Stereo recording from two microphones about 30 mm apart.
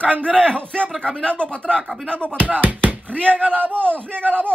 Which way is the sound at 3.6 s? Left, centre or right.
Right.